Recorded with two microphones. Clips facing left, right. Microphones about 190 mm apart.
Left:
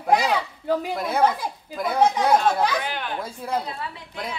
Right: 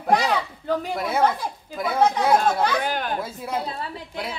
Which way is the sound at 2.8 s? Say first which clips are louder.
Right 4 dB; 40° right (ahead or behind).